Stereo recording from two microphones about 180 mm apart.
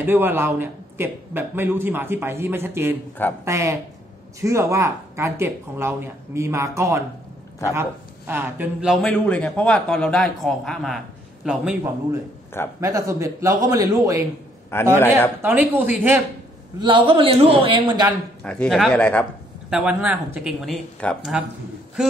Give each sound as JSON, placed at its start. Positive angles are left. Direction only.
{"t": 0.0, "sound": "a man's voice", "side_deg": -10}
{"t": 8.3, "sound": "a man's voice", "side_deg": -10}
{"t": 12.8, "sound": "a man's voice", "side_deg": -15}
{"t": 14.7, "sound": "speech", "side_deg": 10}
{"t": 15.4, "sound": "a man's voice", "side_deg": -10}
{"t": 16.8, "sound": "a man's voice", "side_deg": -25}
{"t": 18.4, "sound": "speech", "side_deg": 5}
{"t": 19.7, "sound": "a man's voice", "side_deg": -5}